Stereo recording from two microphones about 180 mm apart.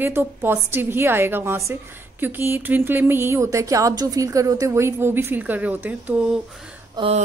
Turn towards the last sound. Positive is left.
turn(degrees=-25)  # may be behind; listen again after turning